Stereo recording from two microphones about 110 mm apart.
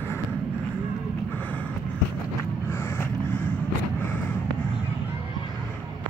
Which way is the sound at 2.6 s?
20° left (ahead or behind).